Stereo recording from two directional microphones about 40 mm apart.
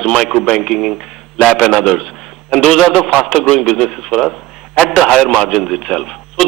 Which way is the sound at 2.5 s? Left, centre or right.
Left.